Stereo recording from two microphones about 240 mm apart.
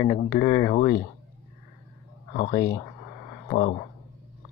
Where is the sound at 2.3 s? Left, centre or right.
Left.